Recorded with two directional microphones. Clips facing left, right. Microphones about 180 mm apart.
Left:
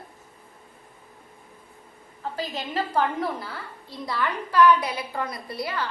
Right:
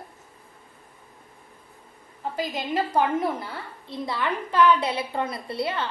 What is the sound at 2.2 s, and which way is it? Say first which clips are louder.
A woman's voice: right 2 dB; 15° right (ahead or behind).